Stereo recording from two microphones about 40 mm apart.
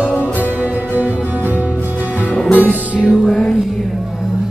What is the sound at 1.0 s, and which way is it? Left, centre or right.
Music, right.